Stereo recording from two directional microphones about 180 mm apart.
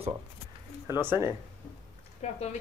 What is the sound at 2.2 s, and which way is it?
Speech, 35° left (ahead or behind).